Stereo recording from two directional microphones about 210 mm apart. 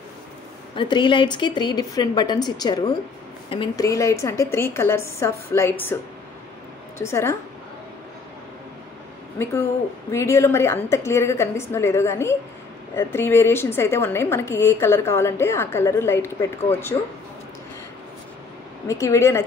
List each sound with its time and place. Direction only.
0.7 s a woman's voice: 25° left (ahead or behind)
7.0 s a woman's voice: 15° left (ahead or behind)
10.1 s a woman's voice: 15° left (ahead or behind)
18.9 s a woman's voice: 15° left (ahead or behind)